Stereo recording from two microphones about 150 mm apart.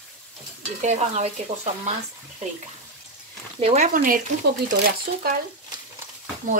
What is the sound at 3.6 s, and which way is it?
Speech, 50° right (ahead or behind).